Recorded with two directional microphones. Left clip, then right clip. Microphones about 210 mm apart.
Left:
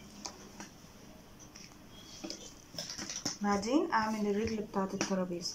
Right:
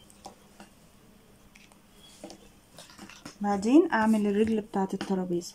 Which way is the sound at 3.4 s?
35° right (ahead or behind).